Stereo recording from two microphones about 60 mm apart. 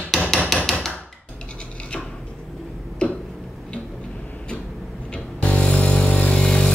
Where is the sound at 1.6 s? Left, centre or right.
Centre.